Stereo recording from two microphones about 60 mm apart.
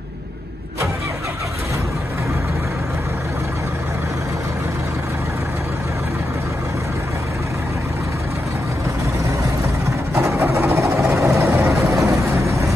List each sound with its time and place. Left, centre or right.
10.1 s vehicle: right
11.9 s vehicle: right